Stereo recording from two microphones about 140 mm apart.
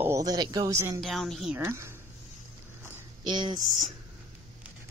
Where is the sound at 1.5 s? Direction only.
20° right (ahead or behind).